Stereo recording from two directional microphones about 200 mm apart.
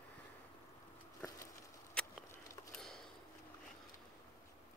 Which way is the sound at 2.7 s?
Centre (ahead or behind).